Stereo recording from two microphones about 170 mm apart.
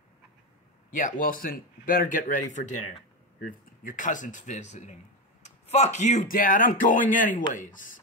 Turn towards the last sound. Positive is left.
turn(degrees=50)  # may be behind; listen again after turning